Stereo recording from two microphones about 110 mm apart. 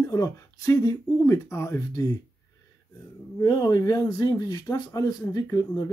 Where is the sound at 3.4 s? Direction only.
40° left (ahead or behind).